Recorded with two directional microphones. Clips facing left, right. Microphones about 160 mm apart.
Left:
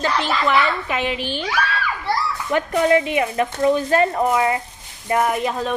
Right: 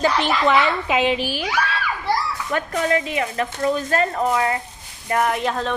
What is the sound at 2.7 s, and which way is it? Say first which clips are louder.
Speech: left 5 dB; 25° left (ahead or behind).